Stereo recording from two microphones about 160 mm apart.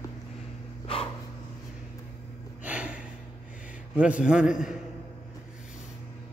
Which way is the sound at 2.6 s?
10° right (ahead or behind).